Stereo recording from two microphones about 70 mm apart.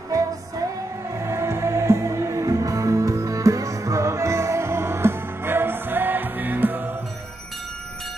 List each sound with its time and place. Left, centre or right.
1.1 s music: right